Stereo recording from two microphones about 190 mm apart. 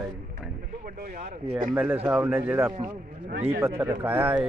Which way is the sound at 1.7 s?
10° right (ahead or behind).